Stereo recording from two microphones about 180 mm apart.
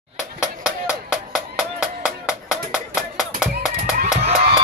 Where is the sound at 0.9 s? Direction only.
5° right (ahead or behind).